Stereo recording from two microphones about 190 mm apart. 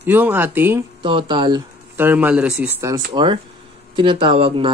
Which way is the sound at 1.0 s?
25° right (ahead or behind).